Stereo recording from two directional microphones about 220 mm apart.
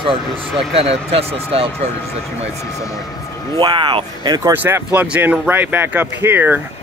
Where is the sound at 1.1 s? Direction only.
25° right (ahead or behind).